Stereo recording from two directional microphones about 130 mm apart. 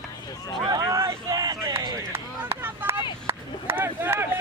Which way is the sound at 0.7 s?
25° right (ahead or behind).